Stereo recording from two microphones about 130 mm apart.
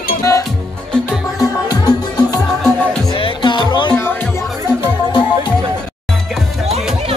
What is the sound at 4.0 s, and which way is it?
Music, 15° left (ahead or behind).